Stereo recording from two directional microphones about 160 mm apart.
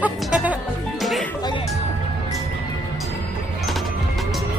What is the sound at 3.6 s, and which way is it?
Music, centre (ahead or behind).